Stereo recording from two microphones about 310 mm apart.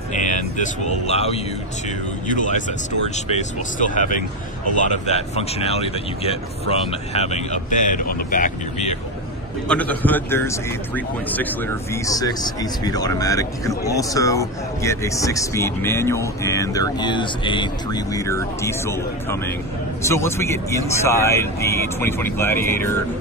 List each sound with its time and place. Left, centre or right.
0.1 s speech: left
9.7 s a man's voice: centre
11.9 s speech: centre
20.0 s speech: centre